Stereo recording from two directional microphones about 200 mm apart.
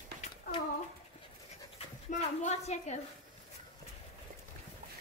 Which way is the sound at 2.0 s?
35° left (ahead or behind).